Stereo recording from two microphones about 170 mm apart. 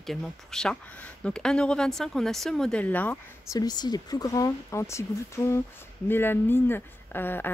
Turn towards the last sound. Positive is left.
turn(degrees=10)  # may be behind; listen again after turning